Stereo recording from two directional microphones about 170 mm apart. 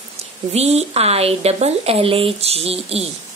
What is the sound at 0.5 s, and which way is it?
A woman's voice, 40° right (ahead or behind).